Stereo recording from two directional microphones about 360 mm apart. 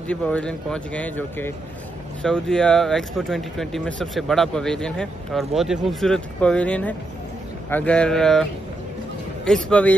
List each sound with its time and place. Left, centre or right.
0.1 s speech: centre